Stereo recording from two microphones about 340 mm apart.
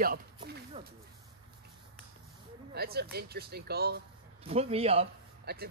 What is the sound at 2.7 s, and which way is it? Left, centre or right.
Speech, right.